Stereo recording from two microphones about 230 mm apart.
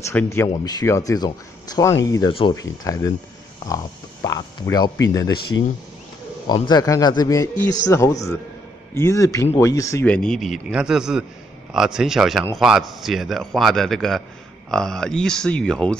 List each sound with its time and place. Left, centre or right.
0.1 s a man's voice: centre
6.4 s a man's voice: centre